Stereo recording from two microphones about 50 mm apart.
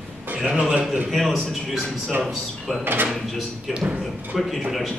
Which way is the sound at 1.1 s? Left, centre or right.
Centre.